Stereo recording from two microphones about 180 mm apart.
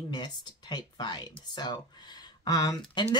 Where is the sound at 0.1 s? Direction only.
25° left (ahead or behind).